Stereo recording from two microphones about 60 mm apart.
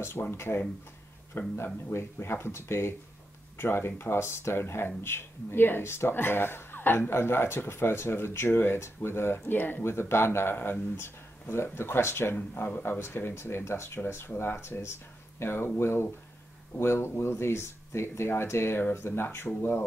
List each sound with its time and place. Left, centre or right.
0.2 s speech: left
9.8 s speech: left
12.5 s speech: left